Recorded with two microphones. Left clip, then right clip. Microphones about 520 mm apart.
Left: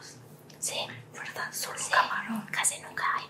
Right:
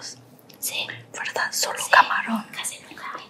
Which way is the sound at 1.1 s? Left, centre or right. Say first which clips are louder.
Right 11 dB; right.